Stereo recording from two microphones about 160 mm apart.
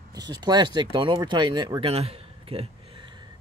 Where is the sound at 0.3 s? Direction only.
25° right (ahead or behind).